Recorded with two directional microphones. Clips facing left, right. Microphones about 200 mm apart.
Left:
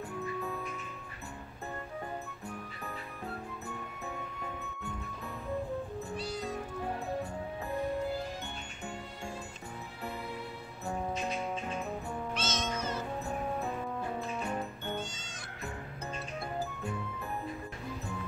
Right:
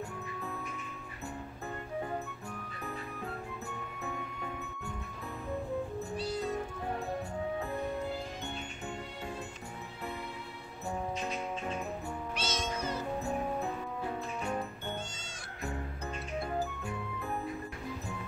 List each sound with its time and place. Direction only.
12.4 s cat: 10° right (ahead or behind)